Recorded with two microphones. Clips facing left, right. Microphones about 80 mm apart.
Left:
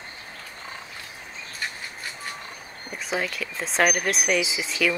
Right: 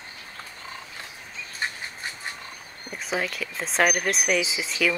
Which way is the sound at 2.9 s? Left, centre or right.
Centre.